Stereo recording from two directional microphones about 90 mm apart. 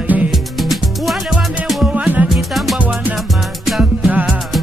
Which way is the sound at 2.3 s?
Centre (ahead or behind).